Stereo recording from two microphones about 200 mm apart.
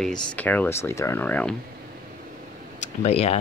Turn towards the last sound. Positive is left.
turn(degrees=30)  # may be behind; listen again after turning